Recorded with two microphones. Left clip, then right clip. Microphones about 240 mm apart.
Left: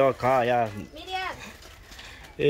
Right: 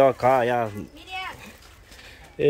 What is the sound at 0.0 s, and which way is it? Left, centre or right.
Speech, centre.